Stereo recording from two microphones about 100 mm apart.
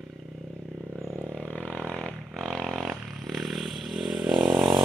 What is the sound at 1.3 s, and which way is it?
Vehicle, 10° left (ahead or behind).